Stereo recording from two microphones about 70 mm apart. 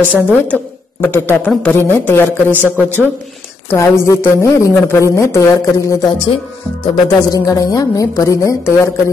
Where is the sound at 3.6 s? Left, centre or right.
Left.